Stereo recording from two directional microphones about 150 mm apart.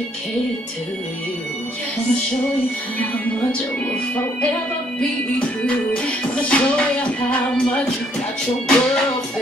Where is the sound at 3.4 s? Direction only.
10° left (ahead or behind).